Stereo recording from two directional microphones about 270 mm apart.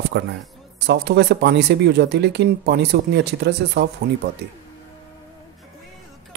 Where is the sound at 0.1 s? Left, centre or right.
Right.